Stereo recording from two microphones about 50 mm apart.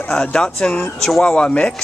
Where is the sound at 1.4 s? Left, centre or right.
Left.